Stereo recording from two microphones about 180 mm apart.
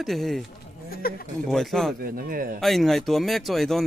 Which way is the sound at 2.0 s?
55° right (ahead or behind).